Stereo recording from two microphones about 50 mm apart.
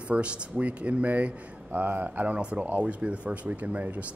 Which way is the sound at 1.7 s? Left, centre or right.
Right.